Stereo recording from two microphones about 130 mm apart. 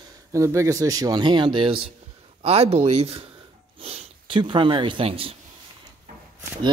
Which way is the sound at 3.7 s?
45° right (ahead or behind).